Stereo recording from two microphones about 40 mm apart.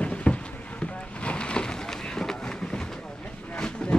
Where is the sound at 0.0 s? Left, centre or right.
Left.